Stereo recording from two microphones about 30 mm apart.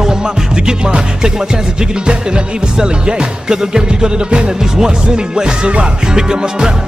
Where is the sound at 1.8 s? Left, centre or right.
Right.